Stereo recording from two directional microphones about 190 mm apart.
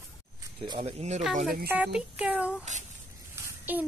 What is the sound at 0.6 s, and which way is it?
Speech, 25° right (ahead or behind).